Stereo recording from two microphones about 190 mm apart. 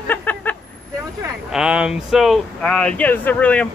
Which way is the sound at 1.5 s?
5° right (ahead or behind).